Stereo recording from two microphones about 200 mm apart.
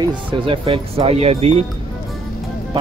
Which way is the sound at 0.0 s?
25° right (ahead or behind).